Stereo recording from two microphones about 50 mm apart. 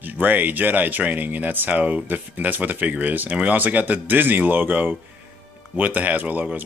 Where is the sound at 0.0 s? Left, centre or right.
Right.